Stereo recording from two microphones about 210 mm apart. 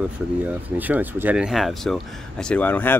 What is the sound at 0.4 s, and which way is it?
Speech, 10° right (ahead or behind).